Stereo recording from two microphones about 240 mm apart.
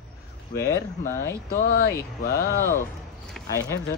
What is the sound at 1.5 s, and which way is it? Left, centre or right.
Speech, left.